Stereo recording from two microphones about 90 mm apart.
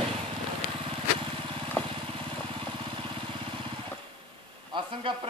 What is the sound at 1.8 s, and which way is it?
Vehicle, 20° left (ahead or behind).